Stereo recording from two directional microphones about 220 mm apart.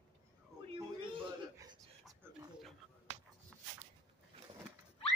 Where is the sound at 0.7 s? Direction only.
20° right (ahead or behind).